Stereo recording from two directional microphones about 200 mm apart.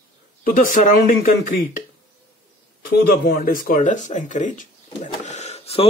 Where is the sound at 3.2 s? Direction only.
45° left (ahead or behind); by 5.8 s 30° left (ahead or behind).